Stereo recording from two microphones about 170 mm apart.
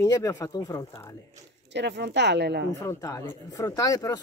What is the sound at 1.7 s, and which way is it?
Speech, 90° right.